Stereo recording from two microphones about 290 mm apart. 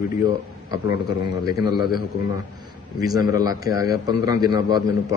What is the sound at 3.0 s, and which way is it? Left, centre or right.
A man's voice, centre.